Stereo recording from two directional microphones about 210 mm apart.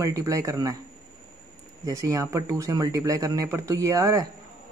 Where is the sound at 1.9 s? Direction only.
15° right (ahead or behind).